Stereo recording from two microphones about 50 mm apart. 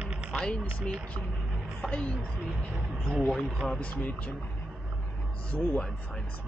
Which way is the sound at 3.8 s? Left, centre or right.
Left.